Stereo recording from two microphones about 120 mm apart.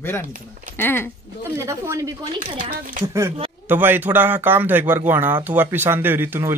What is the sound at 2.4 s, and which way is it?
Speech, 45° right (ahead or behind).